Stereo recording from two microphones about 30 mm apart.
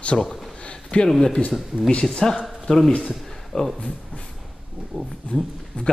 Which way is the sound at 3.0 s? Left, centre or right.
Centre.